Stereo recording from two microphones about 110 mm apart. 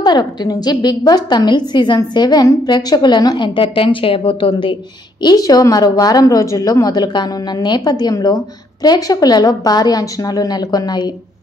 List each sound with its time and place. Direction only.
0.0 s a woman's voice: 40° left (ahead or behind)
5.2 s a woman's voice: 35° left (ahead or behind)